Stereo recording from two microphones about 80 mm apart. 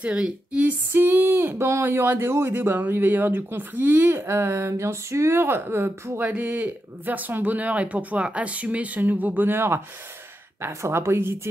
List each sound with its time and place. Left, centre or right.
0.0 s speech: centre; by 11.3 s right